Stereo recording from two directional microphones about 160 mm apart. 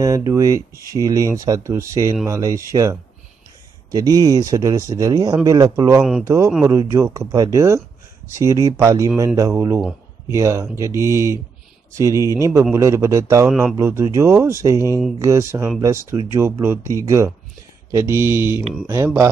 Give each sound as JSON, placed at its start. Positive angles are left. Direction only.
{"t": 0.3, "sound": "speech", "side_deg": -20}
{"t": 5.9, "sound": "speech", "side_deg": -5}
{"t": 6.2, "sound": "speech", "side_deg": -15}
{"t": 13.5, "sound": "speech", "side_deg": -5}
{"t": 13.7, "sound": "speech", "side_deg": -15}